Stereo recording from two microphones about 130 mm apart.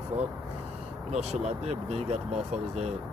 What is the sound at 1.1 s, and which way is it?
Speech, 60° right (ahead or behind).